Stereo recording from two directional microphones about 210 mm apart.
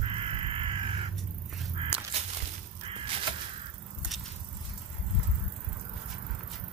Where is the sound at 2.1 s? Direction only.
30° right (ahead or behind).